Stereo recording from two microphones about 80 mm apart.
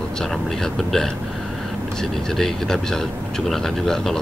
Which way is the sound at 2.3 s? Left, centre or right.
Centre.